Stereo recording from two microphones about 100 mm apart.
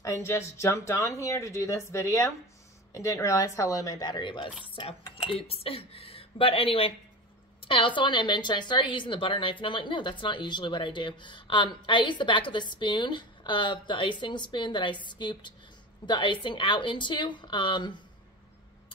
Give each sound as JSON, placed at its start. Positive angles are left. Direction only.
{"t": 0.0, "sound": "speech", "side_deg": 30}
{"t": 5.3, "sound": "speech", "side_deg": 75}